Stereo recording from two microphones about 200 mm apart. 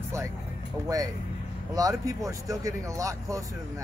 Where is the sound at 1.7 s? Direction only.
15° right (ahead or behind).